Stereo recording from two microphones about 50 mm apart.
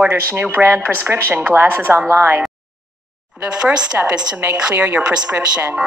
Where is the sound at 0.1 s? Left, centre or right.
Right.